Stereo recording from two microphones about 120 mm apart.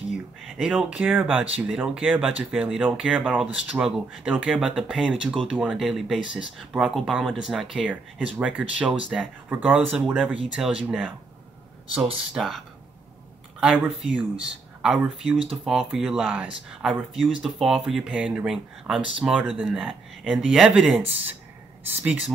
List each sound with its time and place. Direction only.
0.6 s speech: 5° right (ahead or behind)
12.4 s speech: centre (ahead or behind)
14.0 s speech: 5° right (ahead or behind)
21.0 s speech: 15° right (ahead or behind)